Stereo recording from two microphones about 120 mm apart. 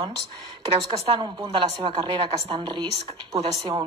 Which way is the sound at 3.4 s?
55° right (ahead or behind).